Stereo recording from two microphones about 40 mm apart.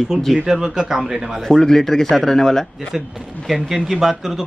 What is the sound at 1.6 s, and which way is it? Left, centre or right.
Speech, centre.